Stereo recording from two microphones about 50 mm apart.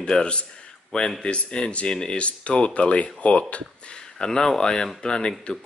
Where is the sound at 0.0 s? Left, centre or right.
Centre.